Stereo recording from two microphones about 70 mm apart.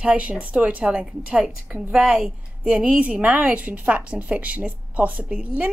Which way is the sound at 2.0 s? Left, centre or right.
Centre.